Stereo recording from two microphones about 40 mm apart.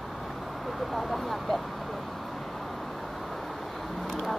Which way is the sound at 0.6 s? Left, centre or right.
Centre.